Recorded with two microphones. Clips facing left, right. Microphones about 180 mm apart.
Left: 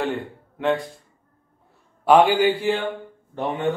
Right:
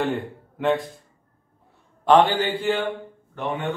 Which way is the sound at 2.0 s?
10° left (ahead or behind).